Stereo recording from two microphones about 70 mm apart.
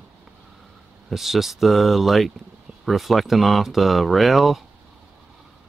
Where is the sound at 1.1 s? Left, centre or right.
Centre.